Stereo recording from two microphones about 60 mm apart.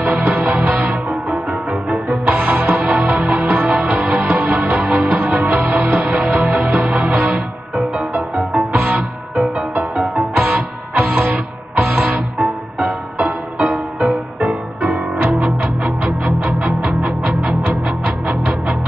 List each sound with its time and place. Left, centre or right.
0.0 s music: right
1.0 s music: centre
2.2 s music: right
7.7 s music: centre
8.7 s music: right
9.3 s music: centre
10.3 s music: centre
12.4 s music: centre
13.9 s music: centre